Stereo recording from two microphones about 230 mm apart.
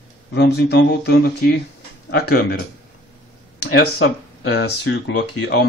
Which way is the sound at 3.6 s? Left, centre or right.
Left.